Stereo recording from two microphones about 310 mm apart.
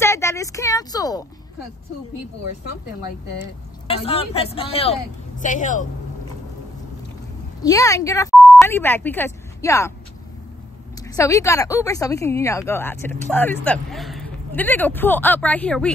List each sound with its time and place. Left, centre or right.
0.0 s speech: centre
3.3 s speech: centre
7.6 s a woman's voice: centre
11.1 s a woman's voice: centre